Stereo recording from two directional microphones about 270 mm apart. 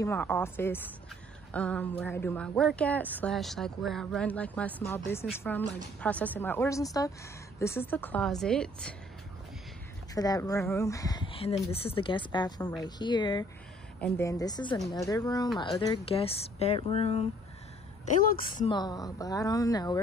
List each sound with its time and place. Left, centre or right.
0.0 s a woman's voice: centre
10.1 s speech: centre
18.7 s speech: centre